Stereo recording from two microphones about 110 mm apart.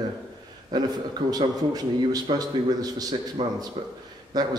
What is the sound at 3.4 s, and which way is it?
Speech, 55° right (ahead or behind).